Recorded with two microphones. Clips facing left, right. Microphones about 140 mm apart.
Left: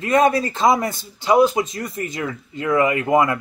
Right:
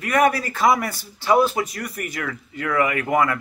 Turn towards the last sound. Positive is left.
turn(degrees=25)  # may be behind; listen again after turning